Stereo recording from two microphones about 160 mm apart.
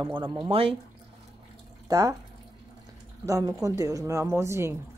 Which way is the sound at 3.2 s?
20° right (ahead or behind).